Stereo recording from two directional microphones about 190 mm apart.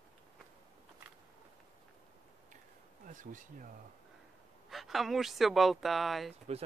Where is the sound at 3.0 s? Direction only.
45° right (ahead or behind).